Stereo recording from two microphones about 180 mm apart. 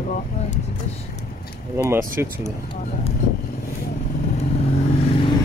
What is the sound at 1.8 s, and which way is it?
Speech, 15° right (ahead or behind).